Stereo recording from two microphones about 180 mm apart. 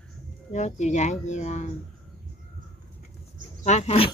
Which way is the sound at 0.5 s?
40° left (ahead or behind).